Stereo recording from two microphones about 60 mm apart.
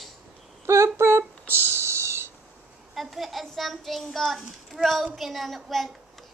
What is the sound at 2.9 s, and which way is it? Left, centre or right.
A child's voice, centre.